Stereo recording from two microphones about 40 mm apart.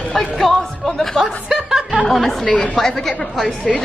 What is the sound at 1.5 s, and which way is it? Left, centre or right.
Speech, centre.